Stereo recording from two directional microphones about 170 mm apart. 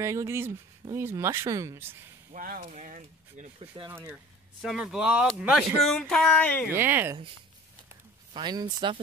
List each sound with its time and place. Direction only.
0.0 s speech: 15° right (ahead or behind)
2.3 s speech: 55° right (ahead or behind)
3.9 s speech: 10° right (ahead or behind); by 6.7 s 10° left (ahead or behind)
6.7 s speech: 15° right (ahead or behind)
8.3 s speech: 25° right (ahead or behind)